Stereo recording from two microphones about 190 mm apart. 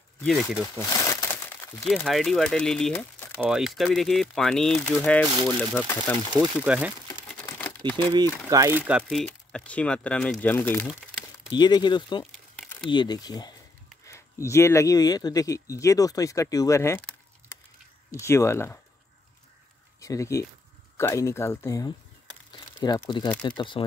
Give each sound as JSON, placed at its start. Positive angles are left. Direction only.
{"t": 0.2, "sound": "speech", "side_deg": 0}
{"t": 1.9, "sound": "speech", "side_deg": 0}
{"t": 3.4, "sound": "speech", "side_deg": 0}
{"t": 7.2, "sound": "crumpling", "side_deg": 10}
{"t": 8.5, "sound": "speech", "side_deg": -15}
{"t": 9.1, "sound": "speech", "side_deg": 5}
{"t": 11.5, "sound": "speech", "side_deg": 25}
{"t": 18.1, "sound": "speech", "side_deg": 15}
{"t": 20.0, "sound": "speech", "side_deg": 15}
{"t": 22.5, "sound": "crumpling", "side_deg": 20}
{"t": 23.4, "sound": "speech", "side_deg": 25}